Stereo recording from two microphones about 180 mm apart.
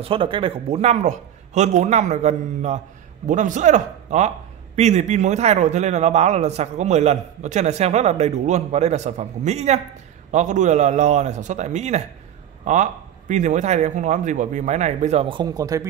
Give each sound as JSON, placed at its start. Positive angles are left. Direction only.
{"t": 0.0, "sound": "a man's voice", "side_deg": -30}